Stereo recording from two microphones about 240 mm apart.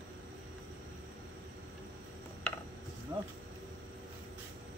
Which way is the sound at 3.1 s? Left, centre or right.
Centre.